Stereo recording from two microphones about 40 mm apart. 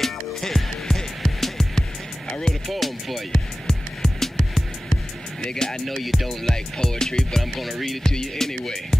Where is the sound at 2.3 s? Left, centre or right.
Centre.